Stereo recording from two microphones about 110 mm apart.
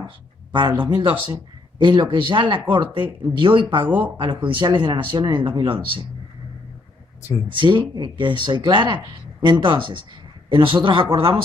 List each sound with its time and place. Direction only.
0.0 s speech: 45° right (ahead or behind)
7.5 s speech: 45° right (ahead or behind)